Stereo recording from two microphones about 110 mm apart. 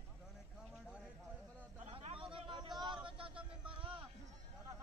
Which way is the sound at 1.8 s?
65° right (ahead or behind).